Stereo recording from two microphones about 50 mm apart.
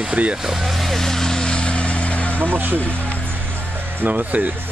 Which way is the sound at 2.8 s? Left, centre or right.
Left.